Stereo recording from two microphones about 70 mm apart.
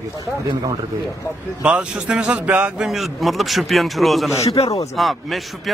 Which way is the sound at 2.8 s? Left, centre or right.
Centre.